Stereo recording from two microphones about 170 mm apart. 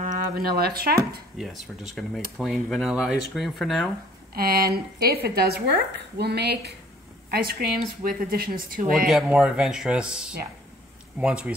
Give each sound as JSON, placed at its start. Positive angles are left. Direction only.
{"t": 0.0, "sound": "speech", "side_deg": -55}
{"t": 2.0, "sound": "speech", "side_deg": 0}
{"t": 4.3, "sound": "a woman's voice", "side_deg": -65}
{"t": 7.2, "sound": "speech", "side_deg": -60}
{"t": 9.1, "sound": "speech", "side_deg": -5}